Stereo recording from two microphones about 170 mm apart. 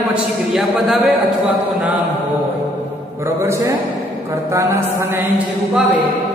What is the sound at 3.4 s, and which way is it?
A man's voice, 15° right (ahead or behind).